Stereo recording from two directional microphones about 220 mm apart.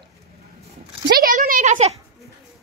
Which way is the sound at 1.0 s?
40° right (ahead or behind).